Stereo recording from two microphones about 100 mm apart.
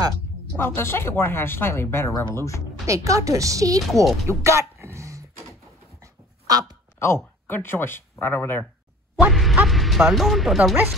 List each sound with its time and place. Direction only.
0.5 s speech: 20° left (ahead or behind)
2.9 s speech: 35° right (ahead or behind)
3.8 s speech: centre (ahead or behind)
4.3 s throat clearing: 30° right (ahead or behind)
7.4 s speech: 20° left (ahead or behind)
9.3 s music: centre (ahead or behind)
9.7 s speech: centre (ahead or behind)